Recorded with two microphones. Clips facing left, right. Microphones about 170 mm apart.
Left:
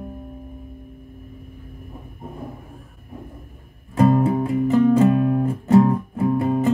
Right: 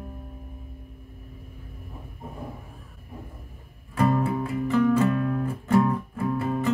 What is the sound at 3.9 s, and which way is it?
Music, 25° left (ahead or behind).